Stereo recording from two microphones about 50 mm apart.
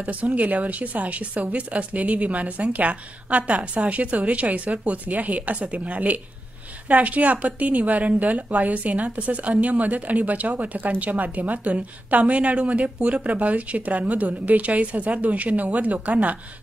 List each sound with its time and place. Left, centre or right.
0.0 s a woman's voice: right